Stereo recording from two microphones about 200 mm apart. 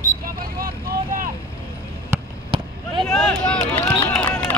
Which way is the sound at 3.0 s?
Centre (ahead or behind).